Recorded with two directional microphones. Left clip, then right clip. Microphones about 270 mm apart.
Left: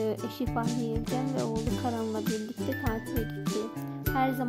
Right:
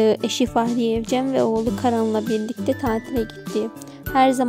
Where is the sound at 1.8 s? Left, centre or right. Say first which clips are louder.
Right 13 dB; right.